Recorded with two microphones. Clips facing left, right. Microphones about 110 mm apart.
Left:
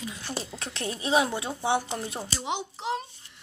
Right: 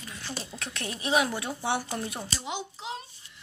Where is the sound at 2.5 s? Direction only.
65° left (ahead or behind).